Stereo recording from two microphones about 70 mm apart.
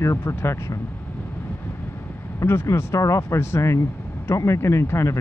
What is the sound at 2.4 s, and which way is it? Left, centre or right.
Speech, left.